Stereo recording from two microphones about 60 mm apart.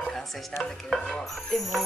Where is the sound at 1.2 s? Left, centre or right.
Centre.